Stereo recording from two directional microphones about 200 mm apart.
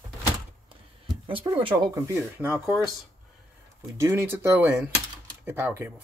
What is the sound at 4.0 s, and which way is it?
Speech, 15° right (ahead or behind).